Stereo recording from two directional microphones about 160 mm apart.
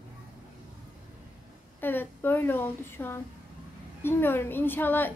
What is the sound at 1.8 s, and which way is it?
A woman's voice, 10° left (ahead or behind).